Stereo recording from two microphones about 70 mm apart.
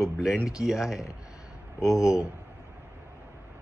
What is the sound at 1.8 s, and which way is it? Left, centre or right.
Speech, left.